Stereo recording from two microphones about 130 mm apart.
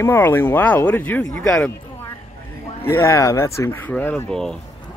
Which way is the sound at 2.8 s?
20° left (ahead or behind).